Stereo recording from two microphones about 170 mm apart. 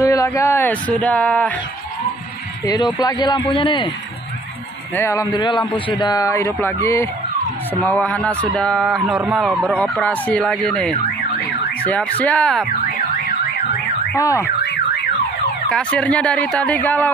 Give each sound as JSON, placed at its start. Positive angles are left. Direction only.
{"t": 0.0, "sound": "speech", "side_deg": 20}
{"t": 2.6, "sound": "speech", "side_deg": 20}
{"t": 4.9, "sound": "speech", "side_deg": 15}
{"t": 14.2, "sound": "speech", "side_deg": 15}
{"t": 14.6, "sound": "car alarm", "side_deg": 85}
{"t": 15.7, "sound": "speech", "side_deg": 5}